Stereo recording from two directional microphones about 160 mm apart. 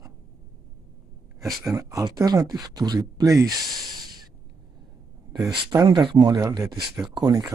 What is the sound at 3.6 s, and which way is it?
Speech, centre (ahead or behind).